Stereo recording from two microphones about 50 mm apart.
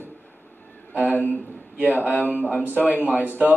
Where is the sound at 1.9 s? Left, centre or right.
Right.